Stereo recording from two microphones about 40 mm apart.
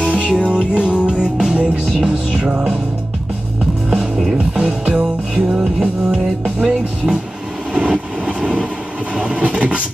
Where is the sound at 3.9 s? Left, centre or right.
Centre.